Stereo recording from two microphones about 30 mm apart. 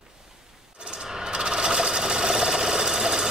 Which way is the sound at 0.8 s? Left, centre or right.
Right.